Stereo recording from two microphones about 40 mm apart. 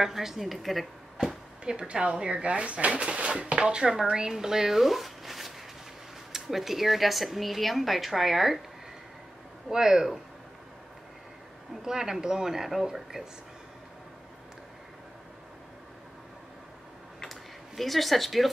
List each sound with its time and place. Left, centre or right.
0.0 s speech: centre
1.1 s chop: centre
2.2 s speech: right; by 8.5 s centre
9.7 s speech: centre
11.8 s speech: centre
17.2 s a sound: centre